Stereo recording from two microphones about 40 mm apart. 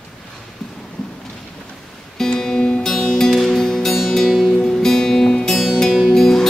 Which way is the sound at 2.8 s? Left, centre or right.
Centre.